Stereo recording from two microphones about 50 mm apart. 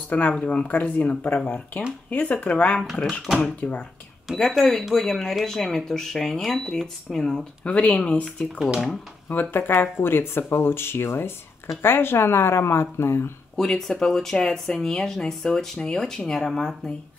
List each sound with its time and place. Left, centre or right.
0.4 s speech: centre
0.7 s speech: left
4.4 s speech: centre
7.6 s speech: left
9.3 s speech: left
13.6 s speech: centre